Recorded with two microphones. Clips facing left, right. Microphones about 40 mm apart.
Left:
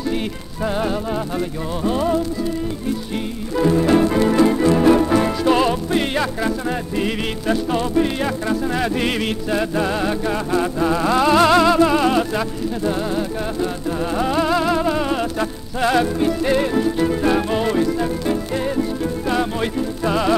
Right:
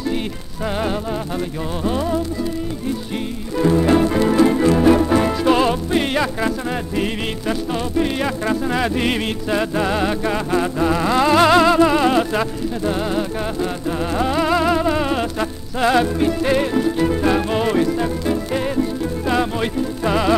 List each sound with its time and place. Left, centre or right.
3.5 s music: centre
8.5 s music: centre
14.1 s music: centre
19.2 s music: centre